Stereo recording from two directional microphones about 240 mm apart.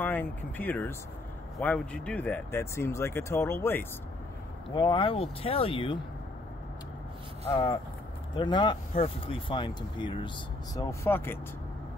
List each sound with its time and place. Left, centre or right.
0.0 s speech: centre
7.4 s speech: centre